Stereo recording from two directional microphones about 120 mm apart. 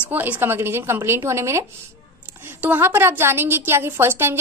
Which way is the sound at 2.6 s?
15° right (ahead or behind).